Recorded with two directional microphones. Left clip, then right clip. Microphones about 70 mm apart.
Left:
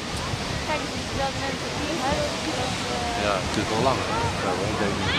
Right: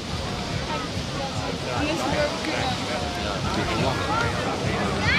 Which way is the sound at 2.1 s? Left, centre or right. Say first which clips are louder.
Right 2 dB; left.